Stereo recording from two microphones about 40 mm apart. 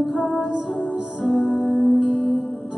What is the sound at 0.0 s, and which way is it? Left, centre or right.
Music, centre.